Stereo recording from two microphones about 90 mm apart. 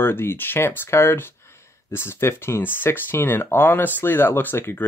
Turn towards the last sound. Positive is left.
turn(degrees=25)  # may be behind; listen again after turning